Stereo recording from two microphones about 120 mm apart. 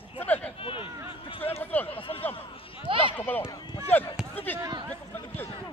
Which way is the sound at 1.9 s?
50° left (ahead or behind).